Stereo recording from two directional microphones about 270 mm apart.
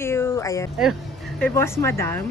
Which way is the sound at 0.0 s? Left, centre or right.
Centre.